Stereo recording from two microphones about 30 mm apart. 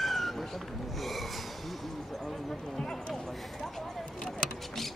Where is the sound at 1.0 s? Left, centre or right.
Centre.